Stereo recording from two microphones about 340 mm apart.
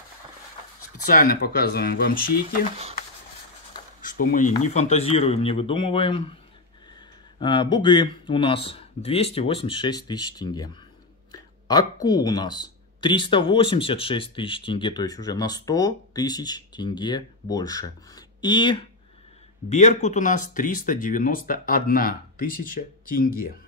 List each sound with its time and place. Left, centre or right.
1.1 s speech: left
4.0 s speech: left
7.3 s speech: centre